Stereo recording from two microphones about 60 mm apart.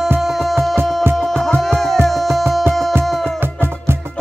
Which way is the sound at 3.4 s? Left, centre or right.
Right.